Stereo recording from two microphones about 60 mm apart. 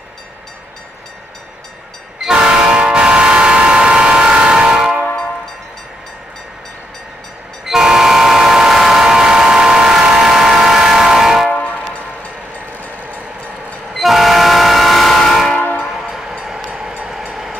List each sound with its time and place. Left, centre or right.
2.2 s train: centre
7.6 s vehicle: centre
11.5 s train: left
13.9 s train: centre